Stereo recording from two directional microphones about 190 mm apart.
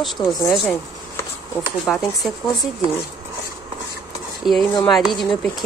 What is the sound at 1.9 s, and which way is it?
Speech, 5° left (ahead or behind).